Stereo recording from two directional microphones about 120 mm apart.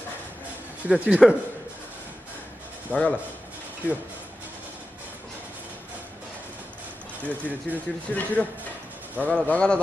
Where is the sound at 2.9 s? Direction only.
15° left (ahead or behind).